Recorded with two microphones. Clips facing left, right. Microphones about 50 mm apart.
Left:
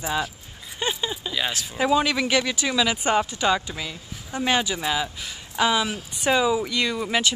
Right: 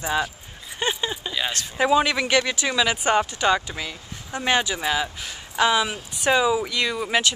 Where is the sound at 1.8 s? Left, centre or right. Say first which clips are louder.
Right 2 dB; centre.